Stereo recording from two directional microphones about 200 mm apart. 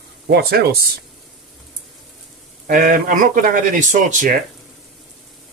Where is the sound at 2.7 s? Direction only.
40° right (ahead or behind).